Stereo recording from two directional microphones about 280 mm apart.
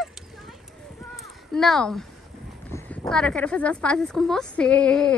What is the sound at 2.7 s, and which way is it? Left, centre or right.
Speech, centre.